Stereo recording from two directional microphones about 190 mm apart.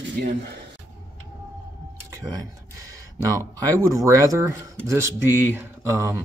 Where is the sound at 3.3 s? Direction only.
15° right (ahead or behind).